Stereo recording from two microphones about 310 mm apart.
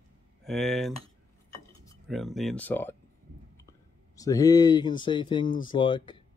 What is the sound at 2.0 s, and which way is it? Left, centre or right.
Speech, centre.